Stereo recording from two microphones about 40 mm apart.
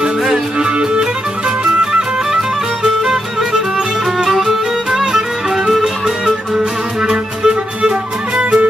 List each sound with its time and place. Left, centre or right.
0.7 s music: right